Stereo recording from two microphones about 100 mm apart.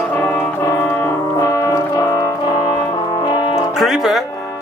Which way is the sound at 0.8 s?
20° left (ahead or behind).